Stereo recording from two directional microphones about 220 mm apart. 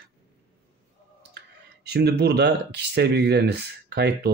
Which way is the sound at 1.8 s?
45° right (ahead or behind).